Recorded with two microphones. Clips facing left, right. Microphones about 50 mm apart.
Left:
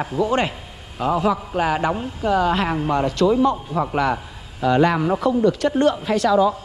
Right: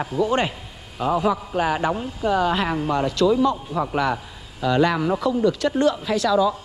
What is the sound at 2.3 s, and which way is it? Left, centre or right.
Speech, left.